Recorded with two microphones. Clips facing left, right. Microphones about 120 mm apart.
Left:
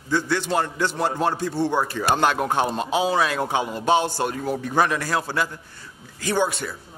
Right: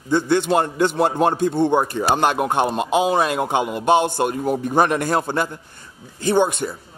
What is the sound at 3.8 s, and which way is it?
Speech, 55° right (ahead or behind).